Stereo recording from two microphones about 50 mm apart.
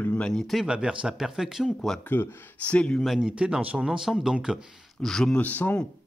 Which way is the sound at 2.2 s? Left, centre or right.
Left.